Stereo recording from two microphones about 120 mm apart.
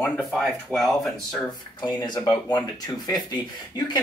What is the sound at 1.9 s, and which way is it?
Speech, 35° left (ahead or behind).